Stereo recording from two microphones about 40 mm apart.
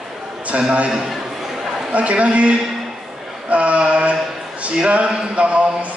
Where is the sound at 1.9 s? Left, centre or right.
Right.